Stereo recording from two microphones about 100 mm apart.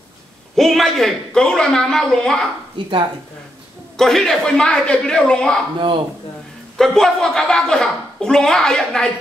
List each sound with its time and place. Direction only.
0.6 s speech: 5° left (ahead or behind)
2.8 s speech: 55° right (ahead or behind)
3.9 s a woman's voice: 5° left (ahead or behind)
6.8 s a woman's voice: 5° left (ahead or behind)